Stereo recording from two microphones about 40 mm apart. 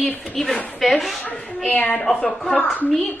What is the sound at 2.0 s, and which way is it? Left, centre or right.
Speech, centre.